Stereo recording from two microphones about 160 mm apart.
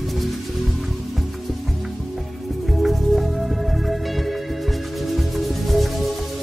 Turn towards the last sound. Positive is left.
turn(degrees=0)  # may be behind; listen again after turning